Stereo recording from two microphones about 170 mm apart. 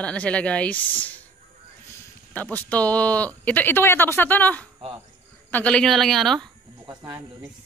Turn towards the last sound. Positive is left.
turn(degrees=-20)  # may be behind; listen again after turning